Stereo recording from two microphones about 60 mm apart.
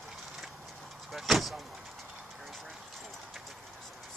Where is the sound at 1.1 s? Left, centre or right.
Centre.